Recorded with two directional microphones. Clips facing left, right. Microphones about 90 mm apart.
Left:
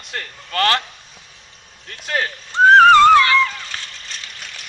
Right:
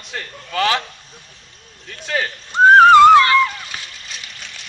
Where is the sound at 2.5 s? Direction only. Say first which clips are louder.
Right 1 dB; 15° right (ahead or behind).